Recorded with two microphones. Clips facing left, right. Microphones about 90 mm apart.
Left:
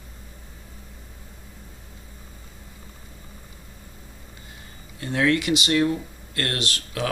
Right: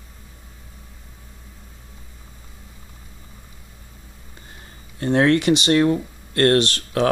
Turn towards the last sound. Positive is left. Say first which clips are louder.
# right 10 dB
turn(degrees=-40)  # may be behind; listen again after turning